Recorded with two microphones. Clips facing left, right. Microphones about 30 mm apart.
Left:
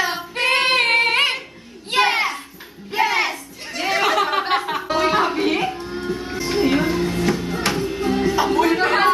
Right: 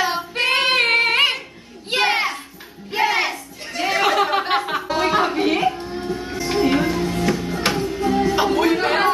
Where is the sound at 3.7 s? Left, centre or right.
Centre.